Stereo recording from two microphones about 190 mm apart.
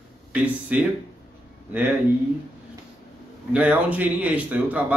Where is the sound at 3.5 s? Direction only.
10° right (ahead or behind).